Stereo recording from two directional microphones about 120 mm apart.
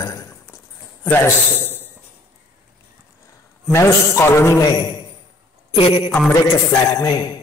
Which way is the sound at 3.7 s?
25° left (ahead or behind).